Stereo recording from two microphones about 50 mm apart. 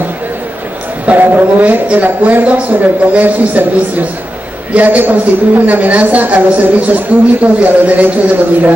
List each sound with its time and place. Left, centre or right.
1.0 s a woman's voice: right
4.7 s a woman's voice: right